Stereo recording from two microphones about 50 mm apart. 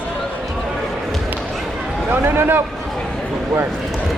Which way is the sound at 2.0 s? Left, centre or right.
Right.